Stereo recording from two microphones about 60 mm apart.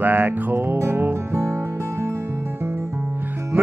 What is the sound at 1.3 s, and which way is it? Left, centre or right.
Music, right.